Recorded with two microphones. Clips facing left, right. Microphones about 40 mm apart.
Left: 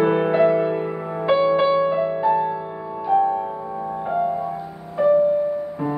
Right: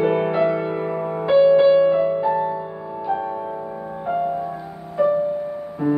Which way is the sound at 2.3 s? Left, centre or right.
Left.